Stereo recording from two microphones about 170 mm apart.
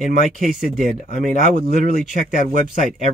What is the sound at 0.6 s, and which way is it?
Speech, 50° right (ahead or behind).